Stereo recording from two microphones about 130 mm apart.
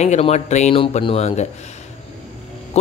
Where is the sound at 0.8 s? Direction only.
45° left (ahead or behind).